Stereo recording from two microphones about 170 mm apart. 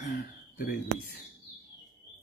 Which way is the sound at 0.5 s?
55° left (ahead or behind).